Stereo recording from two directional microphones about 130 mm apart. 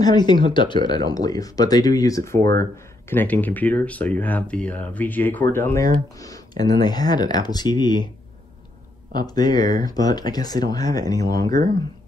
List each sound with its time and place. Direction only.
0.0 s speech: 35° left (ahead or behind)
9.1 s speech: 30° left (ahead or behind)